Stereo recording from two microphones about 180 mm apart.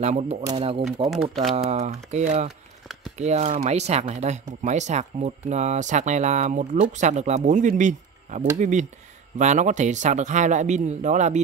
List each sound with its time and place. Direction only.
0.0 s speech: 35° right (ahead or behind)
1.1 s speech: centre (ahead or behind)
1.7 s speech: 40° right (ahead or behind)